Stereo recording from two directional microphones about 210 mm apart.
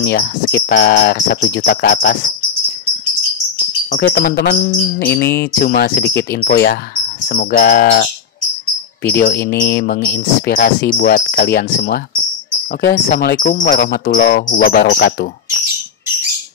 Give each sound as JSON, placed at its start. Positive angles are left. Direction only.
{"t": 0.0, "sound": "speech", "side_deg": 50}
{"t": 3.9, "sound": "speech", "side_deg": 50}